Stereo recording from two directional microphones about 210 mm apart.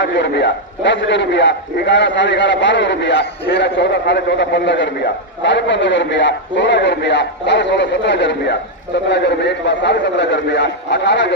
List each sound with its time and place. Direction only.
0.0 s a man's voice: 55° left (ahead or behind)